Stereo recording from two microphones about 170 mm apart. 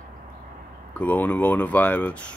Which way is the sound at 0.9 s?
10° left (ahead or behind).